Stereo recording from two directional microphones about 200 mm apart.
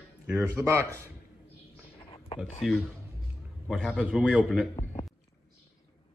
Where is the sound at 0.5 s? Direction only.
15° right (ahead or behind).